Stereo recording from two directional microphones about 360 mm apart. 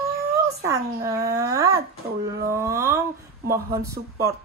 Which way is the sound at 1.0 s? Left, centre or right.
Centre.